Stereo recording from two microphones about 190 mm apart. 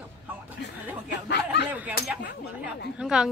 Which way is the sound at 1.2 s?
60° left (ahead or behind).